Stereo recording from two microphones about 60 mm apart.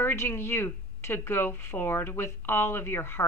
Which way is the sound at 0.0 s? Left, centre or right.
Left.